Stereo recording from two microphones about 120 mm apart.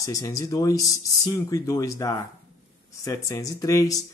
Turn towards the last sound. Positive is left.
turn(degrees=30)  # may be behind; listen again after turning